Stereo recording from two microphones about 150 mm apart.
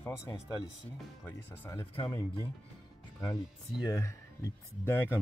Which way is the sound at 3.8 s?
20° left (ahead or behind).